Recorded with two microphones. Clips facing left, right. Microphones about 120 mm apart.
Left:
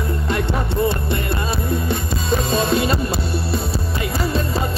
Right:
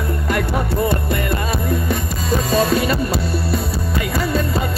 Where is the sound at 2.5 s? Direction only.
30° left (ahead or behind).